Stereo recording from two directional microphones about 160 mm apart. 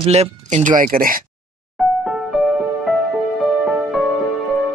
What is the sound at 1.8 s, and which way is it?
Music, centre (ahead or behind).